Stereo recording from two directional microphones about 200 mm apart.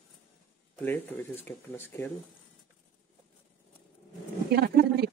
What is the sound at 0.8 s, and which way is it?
Speech, 10° left (ahead or behind).